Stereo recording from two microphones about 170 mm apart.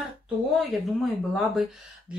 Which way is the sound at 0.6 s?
Centre (ahead or behind).